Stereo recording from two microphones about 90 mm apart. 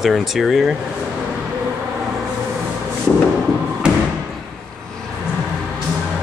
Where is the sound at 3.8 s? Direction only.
10° right (ahead or behind).